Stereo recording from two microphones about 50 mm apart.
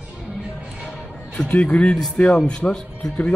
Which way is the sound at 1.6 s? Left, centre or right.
Left.